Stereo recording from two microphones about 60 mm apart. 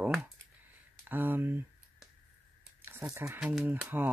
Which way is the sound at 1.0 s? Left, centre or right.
Right.